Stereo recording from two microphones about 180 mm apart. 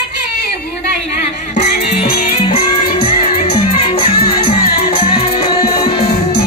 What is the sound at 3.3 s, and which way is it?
Music, 30° left (ahead or behind).